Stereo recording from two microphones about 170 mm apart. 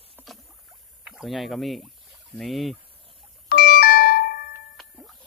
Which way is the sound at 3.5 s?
65° left (ahead or behind).